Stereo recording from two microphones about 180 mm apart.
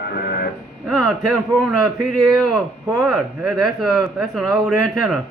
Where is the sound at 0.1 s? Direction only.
55° left (ahead or behind).